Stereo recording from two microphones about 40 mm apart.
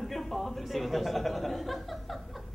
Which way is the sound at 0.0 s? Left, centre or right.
Centre.